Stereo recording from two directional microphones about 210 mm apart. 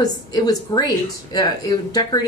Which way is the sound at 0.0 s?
20° left (ahead or behind).